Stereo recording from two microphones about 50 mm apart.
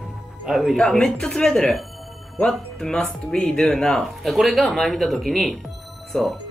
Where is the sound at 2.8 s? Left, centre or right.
Centre.